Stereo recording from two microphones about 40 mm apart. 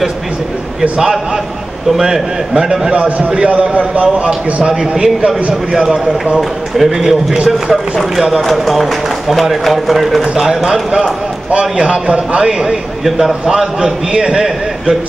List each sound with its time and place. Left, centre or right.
1.9 s a man's voice: centre
2.9 s a man's voice: right